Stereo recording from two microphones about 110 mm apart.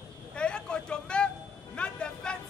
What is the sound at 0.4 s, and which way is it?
Vehicle, 10° left (ahead or behind).